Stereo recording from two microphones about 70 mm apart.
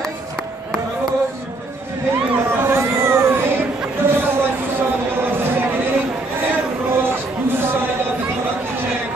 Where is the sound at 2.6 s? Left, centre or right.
Right.